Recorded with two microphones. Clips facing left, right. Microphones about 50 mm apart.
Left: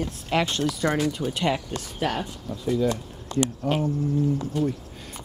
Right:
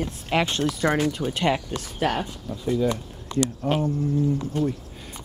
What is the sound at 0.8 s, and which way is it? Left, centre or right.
Speech, right.